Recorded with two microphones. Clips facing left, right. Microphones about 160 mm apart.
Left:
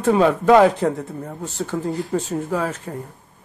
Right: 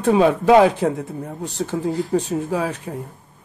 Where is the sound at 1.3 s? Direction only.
20° right (ahead or behind).